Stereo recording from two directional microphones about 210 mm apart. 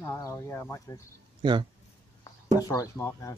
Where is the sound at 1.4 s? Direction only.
20° right (ahead or behind).